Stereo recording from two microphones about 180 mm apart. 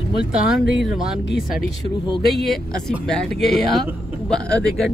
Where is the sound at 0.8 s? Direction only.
5° right (ahead or behind).